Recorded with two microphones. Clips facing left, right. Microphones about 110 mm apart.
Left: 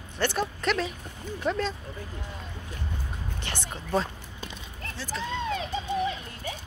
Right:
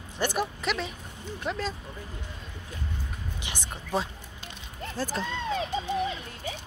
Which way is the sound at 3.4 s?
10° right (ahead or behind).